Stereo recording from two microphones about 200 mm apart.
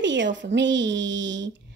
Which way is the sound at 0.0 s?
60° right (ahead or behind).